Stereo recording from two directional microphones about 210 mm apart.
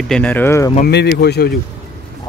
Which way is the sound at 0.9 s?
55° left (ahead or behind).